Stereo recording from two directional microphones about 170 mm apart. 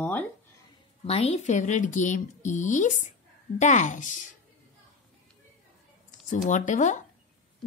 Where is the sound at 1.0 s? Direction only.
35° left (ahead or behind).